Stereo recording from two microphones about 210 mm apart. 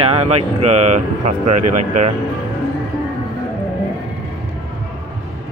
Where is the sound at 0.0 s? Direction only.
25° right (ahead or behind).